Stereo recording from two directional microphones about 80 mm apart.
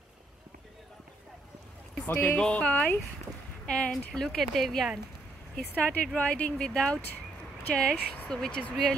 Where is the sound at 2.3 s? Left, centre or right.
Centre.